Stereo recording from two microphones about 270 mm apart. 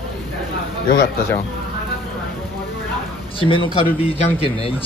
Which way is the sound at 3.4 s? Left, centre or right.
Centre.